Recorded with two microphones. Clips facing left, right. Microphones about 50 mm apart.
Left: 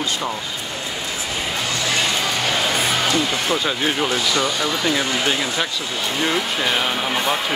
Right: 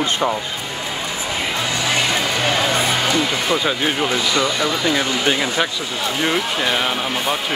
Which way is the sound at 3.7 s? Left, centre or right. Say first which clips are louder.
Right 1 dB; centre.